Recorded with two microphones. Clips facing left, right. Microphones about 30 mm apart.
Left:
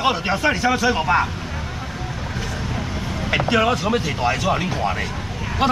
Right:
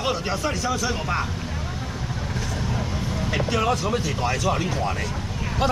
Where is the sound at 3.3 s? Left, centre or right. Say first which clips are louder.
Left 5 dB; left.